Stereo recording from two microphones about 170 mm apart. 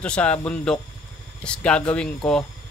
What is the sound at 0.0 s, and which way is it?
Speech, 5° left (ahead or behind).